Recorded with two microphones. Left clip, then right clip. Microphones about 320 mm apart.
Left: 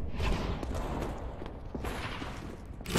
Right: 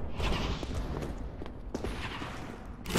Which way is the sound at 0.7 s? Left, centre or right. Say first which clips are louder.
Left 3 dB; centre.